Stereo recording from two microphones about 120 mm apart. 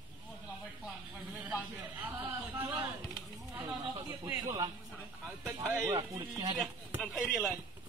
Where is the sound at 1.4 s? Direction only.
10° right (ahead or behind).